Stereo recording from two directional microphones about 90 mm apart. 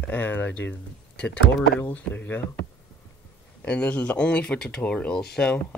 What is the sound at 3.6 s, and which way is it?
Speech, 15° left (ahead or behind).